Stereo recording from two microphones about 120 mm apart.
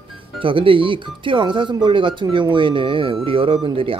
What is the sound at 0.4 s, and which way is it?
Speech, 45° right (ahead or behind).